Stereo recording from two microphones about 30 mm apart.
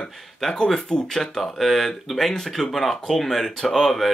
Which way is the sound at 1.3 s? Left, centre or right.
Centre.